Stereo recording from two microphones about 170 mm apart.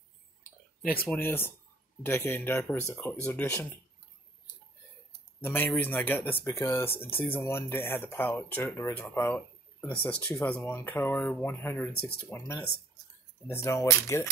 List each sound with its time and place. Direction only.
1.0 s speech: 10° left (ahead or behind)
5.4 s speech: 15° left (ahead or behind)